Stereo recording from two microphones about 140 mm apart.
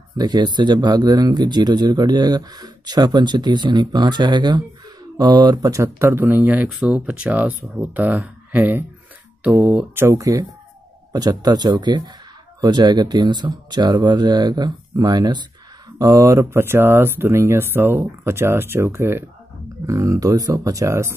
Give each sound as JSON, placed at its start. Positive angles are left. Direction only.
{"t": 0.2, "sound": "speech", "side_deg": -30}